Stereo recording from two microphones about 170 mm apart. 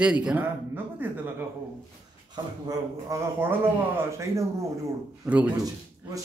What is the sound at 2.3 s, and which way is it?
Speech, 20° right (ahead or behind).